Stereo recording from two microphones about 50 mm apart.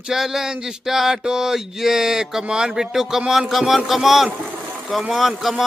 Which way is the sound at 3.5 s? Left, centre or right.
Centre.